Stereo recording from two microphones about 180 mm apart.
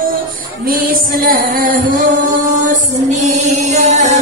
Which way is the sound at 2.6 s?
40° right (ahead or behind).